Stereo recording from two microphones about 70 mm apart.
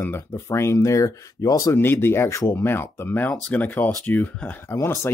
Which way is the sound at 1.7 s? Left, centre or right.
Left.